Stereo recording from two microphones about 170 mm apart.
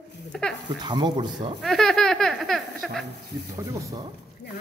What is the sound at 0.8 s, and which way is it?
Speech, 25° right (ahead or behind).